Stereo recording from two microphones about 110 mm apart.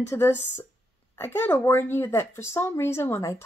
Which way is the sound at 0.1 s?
20° left (ahead or behind).